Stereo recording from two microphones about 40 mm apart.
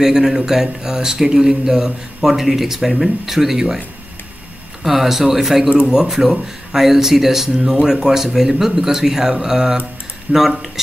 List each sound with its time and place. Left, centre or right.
0.0 s speech: centre
4.8 s speech: centre
5.7 s speech: right
5.9 s speech: centre